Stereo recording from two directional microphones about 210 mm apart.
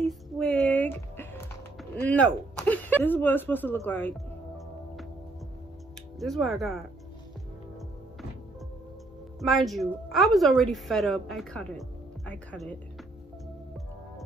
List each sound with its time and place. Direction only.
0.4 s music: 5° left (ahead or behind)
1.8 s speech: 5° left (ahead or behind)
6.1 s a woman's voice: centre (ahead or behind)
9.4 s a woman's voice: centre (ahead or behind)